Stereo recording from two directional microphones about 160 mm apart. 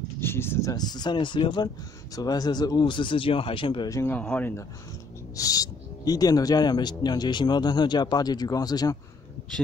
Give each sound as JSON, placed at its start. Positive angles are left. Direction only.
{"t": 0.2, "sound": "speech", "side_deg": 15}
{"t": 4.0, "sound": "speech", "side_deg": 10}
{"t": 5.3, "sound": "speech", "side_deg": 20}